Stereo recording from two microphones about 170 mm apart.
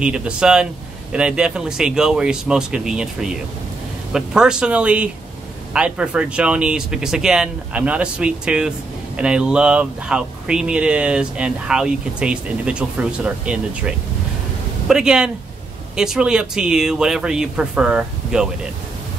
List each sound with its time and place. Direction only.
0.0 s speech: 5° right (ahead or behind)